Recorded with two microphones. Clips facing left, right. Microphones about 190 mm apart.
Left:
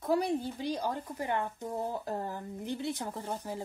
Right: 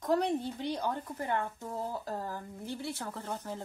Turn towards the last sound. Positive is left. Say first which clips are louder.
# left 2 dB
turn(degrees=10)  # may be behind; listen again after turning